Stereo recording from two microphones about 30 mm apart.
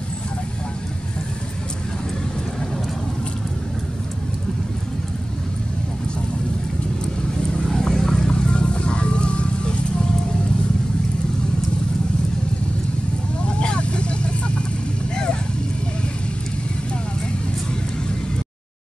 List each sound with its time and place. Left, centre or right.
7.5 s vehicle: left
7.9 s music: left
13.5 s vehicle: left